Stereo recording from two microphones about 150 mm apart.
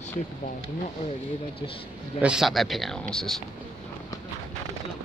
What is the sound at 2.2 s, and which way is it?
A man's voice, 5° right (ahead or behind).